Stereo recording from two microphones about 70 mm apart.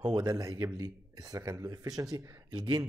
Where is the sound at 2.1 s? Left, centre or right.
Right.